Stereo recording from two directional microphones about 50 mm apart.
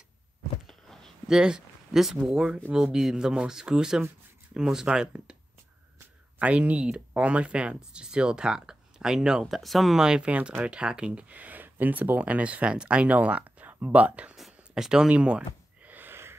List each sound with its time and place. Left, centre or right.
0.7 s a sound: centre
1.2 s speech: centre
6.4 s speech: right
9.6 s speech: centre
9.9 s speech: centre
14.8 s speech: centre
15.0 s speech: right
15.9 s a sound: right